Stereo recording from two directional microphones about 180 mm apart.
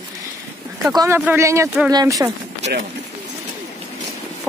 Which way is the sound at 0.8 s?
20° right (ahead or behind).